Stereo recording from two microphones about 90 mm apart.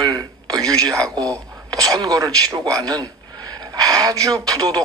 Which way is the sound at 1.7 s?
45° right (ahead or behind).